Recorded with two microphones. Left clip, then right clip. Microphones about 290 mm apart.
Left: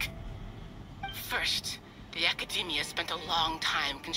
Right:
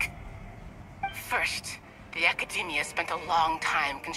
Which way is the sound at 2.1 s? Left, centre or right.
Centre.